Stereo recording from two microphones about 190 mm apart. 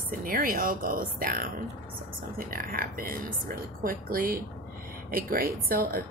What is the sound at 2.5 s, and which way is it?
Speech, 50° right (ahead or behind).